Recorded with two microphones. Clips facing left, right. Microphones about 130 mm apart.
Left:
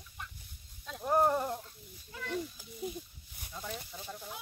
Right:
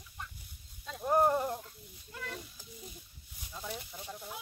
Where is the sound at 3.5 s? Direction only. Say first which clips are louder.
Even; 10° right (ahead or behind).